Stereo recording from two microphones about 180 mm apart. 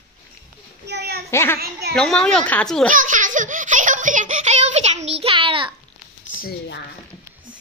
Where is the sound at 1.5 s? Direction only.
60° right (ahead or behind).